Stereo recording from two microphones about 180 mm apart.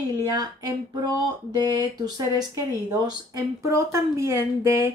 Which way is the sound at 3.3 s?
15° right (ahead or behind).